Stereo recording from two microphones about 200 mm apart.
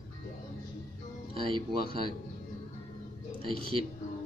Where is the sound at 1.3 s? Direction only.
25° right (ahead or behind).